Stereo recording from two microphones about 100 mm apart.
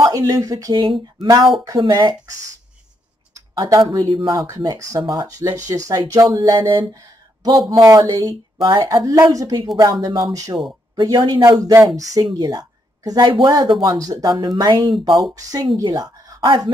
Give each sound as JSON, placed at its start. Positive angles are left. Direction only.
{"t": 0.0, "sound": "speech", "side_deg": -40}
{"t": 0.7, "sound": "speech", "side_deg": -55}
{"t": 1.6, "sound": "speech", "side_deg": -40}
{"t": 3.5, "sound": "speech", "side_deg": -35}
{"t": 4.1, "sound": "speech", "side_deg": -55}
{"t": 4.5, "sound": "speech", "side_deg": -35}
{"t": 7.8, "sound": "speech", "side_deg": -35}
{"t": 12.4, "sound": "a sound", "side_deg": -40}
{"t": 13.3, "sound": "speech", "side_deg": -40}
{"t": 13.7, "sound": "speech", "side_deg": -50}
{"t": 13.9, "sound": "speech", "side_deg": -40}